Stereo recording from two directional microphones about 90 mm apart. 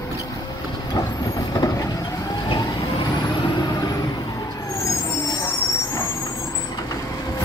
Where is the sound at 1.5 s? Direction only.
45° left (ahead or behind).